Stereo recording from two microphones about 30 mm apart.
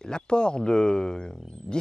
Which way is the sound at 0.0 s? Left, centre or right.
Left.